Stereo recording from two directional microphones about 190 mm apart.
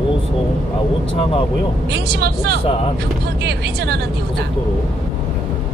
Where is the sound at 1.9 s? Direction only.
60° right (ahead or behind).